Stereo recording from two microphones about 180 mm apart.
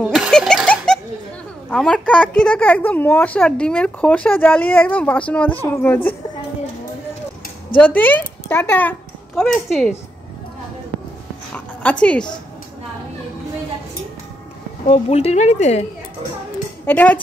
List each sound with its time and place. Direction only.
0.0 s a sound: centre (ahead or behind)
1.7 s a woman's voice: 5° left (ahead or behind)
7.7 s a child's voice: 10° left (ahead or behind)
11.5 s dog: 5° left (ahead or behind)
14.9 s speech: 35° left (ahead or behind)
16.8 s a woman's voice: 10° left (ahead or behind)